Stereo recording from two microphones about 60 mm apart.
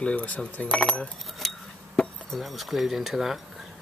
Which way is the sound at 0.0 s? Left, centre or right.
Left.